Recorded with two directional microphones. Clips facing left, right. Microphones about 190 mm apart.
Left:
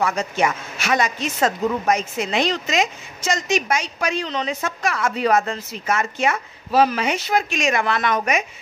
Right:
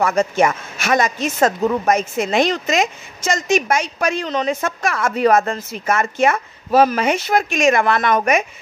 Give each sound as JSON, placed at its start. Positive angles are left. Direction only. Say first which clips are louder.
{"t": 0.0, "sound": "a woman's voice", "louder": "right 5 dB", "side_deg": -50}